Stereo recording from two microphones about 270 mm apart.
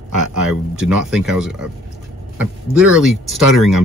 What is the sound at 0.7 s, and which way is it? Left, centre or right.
Speech, centre.